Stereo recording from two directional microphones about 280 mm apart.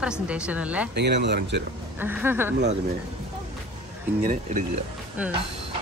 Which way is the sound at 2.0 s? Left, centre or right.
Centre.